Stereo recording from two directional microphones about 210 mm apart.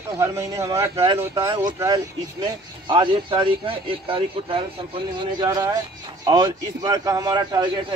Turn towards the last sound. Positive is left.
turn(degrees=-20)  # may be behind; listen again after turning